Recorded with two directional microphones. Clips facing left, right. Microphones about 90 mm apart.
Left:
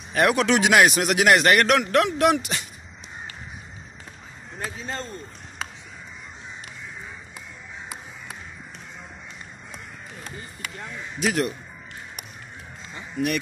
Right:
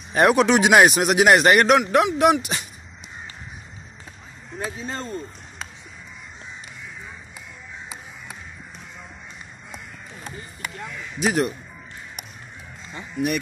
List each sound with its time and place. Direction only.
0.1 s a man's voice: 20° right (ahead or behind)
4.6 s a man's voice: 20° right (ahead or behind)
11.1 s a man's voice: 20° right (ahead or behind)
12.9 s speech: 20° right (ahead or behind)